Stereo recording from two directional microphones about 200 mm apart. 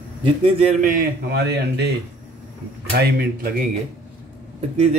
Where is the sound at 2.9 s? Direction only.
55° right (ahead or behind).